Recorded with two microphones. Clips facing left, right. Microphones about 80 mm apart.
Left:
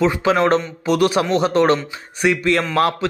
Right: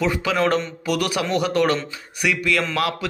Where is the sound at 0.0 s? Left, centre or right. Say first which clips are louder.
Left 4 dB; left.